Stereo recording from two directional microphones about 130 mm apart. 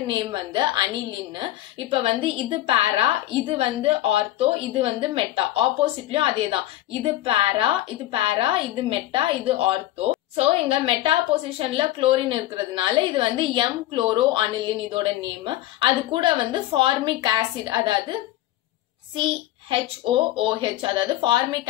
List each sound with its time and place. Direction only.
0.0 s a woman's voice: 35° right (ahead or behind)
19.1 s a child's voice: 40° right (ahead or behind)